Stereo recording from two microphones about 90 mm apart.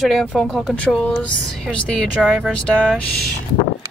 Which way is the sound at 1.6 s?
10° left (ahead or behind).